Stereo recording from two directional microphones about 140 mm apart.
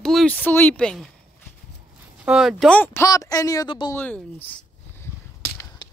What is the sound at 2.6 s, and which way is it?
A woman's voice, 15° left (ahead or behind).